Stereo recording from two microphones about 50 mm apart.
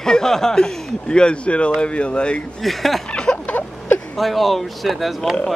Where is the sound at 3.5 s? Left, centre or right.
Left.